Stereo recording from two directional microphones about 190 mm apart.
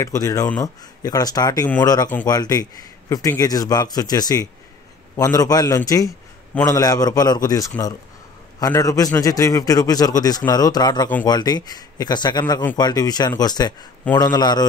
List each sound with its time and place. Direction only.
0.0 s speech: 15° left (ahead or behind)